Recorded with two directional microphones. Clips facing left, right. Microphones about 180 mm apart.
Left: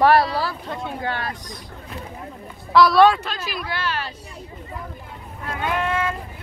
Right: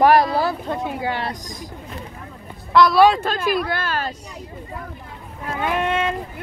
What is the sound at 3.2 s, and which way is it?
Speech, 50° right (ahead or behind).